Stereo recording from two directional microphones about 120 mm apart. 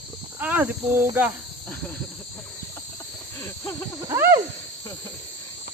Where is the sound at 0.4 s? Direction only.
15° right (ahead or behind).